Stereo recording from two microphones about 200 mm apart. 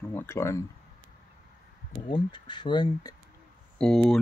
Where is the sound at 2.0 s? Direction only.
20° left (ahead or behind).